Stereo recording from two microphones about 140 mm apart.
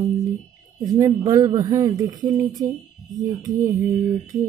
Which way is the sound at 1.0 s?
25° right (ahead or behind).